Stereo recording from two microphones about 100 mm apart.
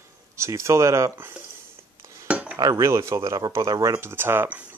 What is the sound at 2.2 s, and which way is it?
Cutlery, 10° right (ahead or behind).